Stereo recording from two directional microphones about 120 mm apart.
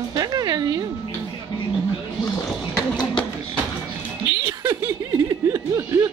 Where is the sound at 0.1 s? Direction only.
35° right (ahead or behind).